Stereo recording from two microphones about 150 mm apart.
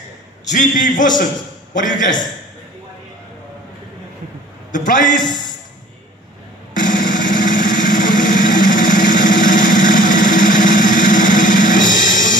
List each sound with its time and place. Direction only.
0.5 s a man's voice: 60° left (ahead or behind)
4.7 s a sound: 60° left (ahead or behind)
5.0 s a man's voice: 30° left (ahead or behind)
6.7 s music: 60° left (ahead or behind)